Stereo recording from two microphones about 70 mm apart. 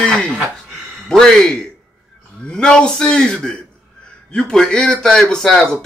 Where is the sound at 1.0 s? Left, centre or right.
Centre.